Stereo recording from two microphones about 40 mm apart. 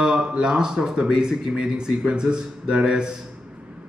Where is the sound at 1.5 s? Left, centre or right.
Right.